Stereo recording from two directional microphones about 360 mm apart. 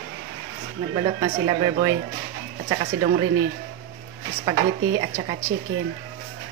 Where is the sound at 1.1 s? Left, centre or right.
Centre.